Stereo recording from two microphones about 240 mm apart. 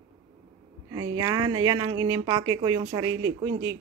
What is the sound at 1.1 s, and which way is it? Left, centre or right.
Speech, centre.